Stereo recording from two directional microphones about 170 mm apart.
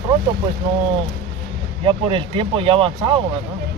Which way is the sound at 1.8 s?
30° right (ahead or behind).